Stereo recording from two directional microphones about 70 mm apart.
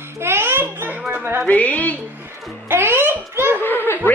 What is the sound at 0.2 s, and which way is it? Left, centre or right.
Music, right.